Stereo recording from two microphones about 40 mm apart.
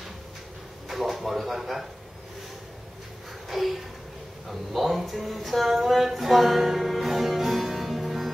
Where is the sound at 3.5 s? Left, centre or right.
Centre.